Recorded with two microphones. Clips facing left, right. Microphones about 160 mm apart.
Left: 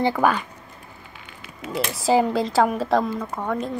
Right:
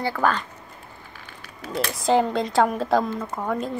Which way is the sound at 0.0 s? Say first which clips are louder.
Left 3 dB; 15° left (ahead or behind).